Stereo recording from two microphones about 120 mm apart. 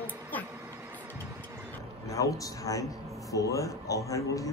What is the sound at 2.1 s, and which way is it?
A man's voice, 30° left (ahead or behind).